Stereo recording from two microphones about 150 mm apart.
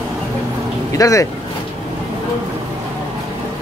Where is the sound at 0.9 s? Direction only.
20° left (ahead or behind).